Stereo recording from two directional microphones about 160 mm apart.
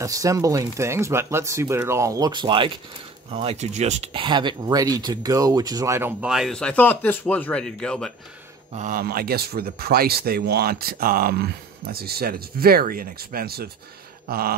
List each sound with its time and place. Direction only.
0.0 s speech: 20° right (ahead or behind)
6.2 s speech: centre (ahead or behind)
8.7 s speech: 55° right (ahead or behind)
9.0 s speech: 75° right (ahead or behind)
14.2 s a sound: 70° right (ahead or behind)